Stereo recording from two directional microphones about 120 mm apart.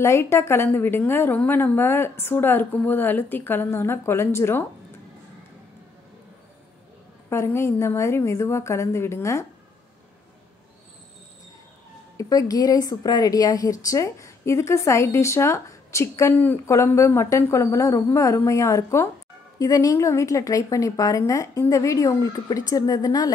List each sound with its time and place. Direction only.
0.0 s a woman's voice: 20° left (ahead or behind)
7.2 s a woman's voice: 20° left (ahead or behind)
12.2 s a woman's voice: 30° left (ahead or behind)